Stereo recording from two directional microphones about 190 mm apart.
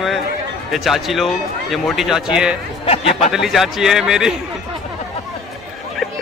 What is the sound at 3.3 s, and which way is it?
Speech, centre (ahead or behind).